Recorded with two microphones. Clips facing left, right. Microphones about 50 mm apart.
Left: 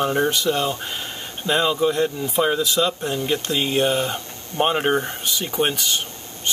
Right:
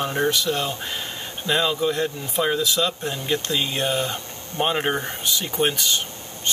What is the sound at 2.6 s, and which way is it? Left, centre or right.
Speech, left.